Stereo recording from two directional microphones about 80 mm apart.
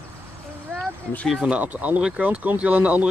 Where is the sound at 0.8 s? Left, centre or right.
Centre.